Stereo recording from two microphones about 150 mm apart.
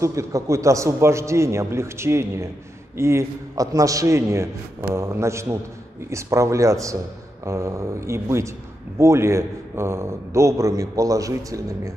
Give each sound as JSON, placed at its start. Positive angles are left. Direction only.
{"t": 0.0, "sound": "a man's voice", "side_deg": -20}